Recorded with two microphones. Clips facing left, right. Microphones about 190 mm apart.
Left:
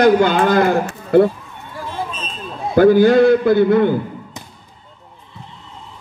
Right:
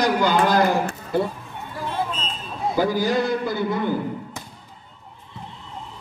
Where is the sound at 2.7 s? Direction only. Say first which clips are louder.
Left 12 dB; 60° left (ahead or behind).